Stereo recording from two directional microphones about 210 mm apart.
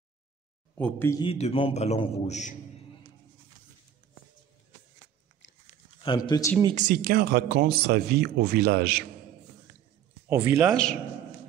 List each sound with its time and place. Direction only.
0.7 s speech: 10° left (ahead or behind)
1.2 s a man's voice: 25° left (ahead or behind)
6.0 s speech: 20° left (ahead or behind)
6.7 s speech: 40° right (ahead or behind)
10.2 s speech: 10° right (ahead or behind)
10.7 s a man's voice: 5° left (ahead or behind)